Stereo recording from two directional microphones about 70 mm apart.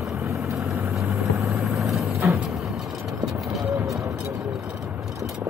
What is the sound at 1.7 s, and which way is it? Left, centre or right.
Vehicle, centre.